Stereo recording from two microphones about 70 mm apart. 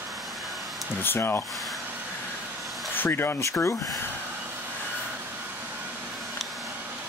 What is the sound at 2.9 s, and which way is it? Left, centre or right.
Speech, left.